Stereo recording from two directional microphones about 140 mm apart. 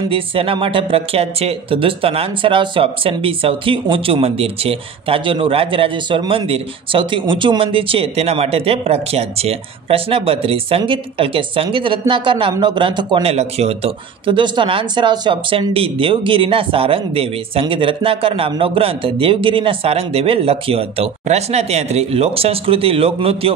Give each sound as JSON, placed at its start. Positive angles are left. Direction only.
{"t": 0.1, "sound": "speech", "side_deg": -40}